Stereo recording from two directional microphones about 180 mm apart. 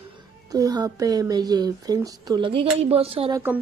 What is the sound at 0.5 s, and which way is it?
Speech, 20° right (ahead or behind).